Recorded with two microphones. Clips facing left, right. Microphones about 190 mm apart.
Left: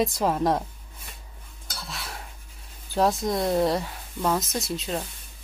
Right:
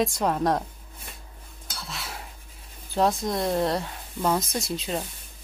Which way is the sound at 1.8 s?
Centre (ahead or behind).